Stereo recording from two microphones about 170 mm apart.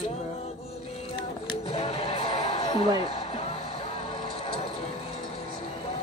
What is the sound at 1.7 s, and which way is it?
Music, 35° left (ahead or behind).